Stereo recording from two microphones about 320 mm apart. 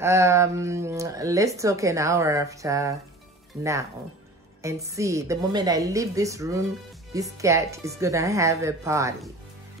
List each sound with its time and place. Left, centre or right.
0.0 s speech: centre
4.6 s speech: centre